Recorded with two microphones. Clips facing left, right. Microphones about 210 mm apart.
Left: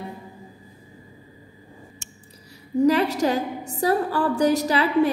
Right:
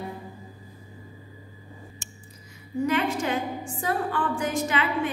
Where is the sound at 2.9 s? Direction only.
40° left (ahead or behind).